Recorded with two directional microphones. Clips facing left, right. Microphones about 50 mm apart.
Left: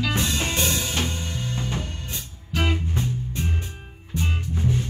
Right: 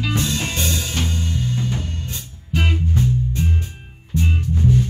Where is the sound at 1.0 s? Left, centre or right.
Centre.